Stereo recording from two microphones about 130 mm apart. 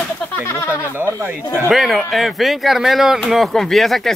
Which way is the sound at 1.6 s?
Centre (ahead or behind).